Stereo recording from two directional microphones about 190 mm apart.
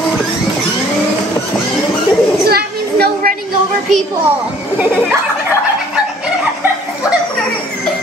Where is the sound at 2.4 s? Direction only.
55° right (ahead or behind).